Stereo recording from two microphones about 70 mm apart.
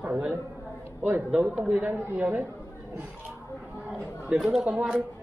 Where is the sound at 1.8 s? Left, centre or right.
Right.